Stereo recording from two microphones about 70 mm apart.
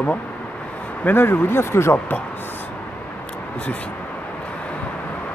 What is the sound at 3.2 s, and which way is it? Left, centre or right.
Vehicle, centre.